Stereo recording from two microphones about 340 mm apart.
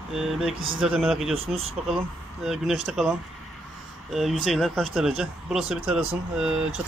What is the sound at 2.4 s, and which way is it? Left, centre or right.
Speech, centre.